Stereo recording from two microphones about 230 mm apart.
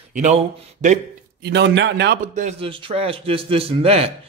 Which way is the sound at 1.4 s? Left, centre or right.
Right.